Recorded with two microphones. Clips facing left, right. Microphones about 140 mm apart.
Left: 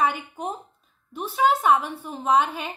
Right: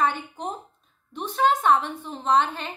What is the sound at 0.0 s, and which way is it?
A woman's voice, 10° left (ahead or behind).